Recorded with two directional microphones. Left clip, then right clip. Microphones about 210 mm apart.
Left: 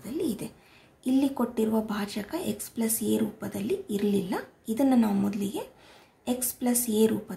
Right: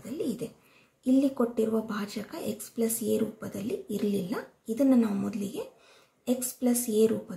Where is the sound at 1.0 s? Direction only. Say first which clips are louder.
Right 1 dB; 45° left (ahead or behind).